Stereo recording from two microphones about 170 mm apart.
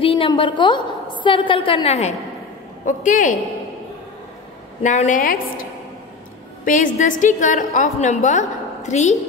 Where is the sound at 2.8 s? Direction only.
50° left (ahead or behind).